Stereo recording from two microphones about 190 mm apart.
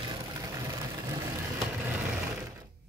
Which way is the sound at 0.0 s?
25° right (ahead or behind).